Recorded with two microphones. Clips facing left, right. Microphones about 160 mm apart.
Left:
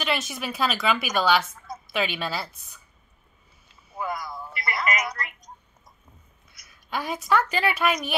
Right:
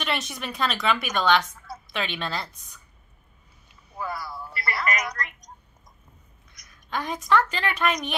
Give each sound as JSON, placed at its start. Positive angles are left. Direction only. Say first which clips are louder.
{"t": 0.0, "sound": "a woman's voice", "louder": "left 2 dB", "side_deg": 0}
{"t": 4.0, "sound": "a sound", "louder": "left 1 dB", "side_deg": 15}
{"t": 6.5, "sound": "a woman's voice", "louder": "even", "side_deg": 10}